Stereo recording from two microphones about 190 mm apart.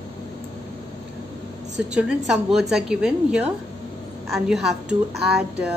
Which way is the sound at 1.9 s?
Centre (ahead or behind).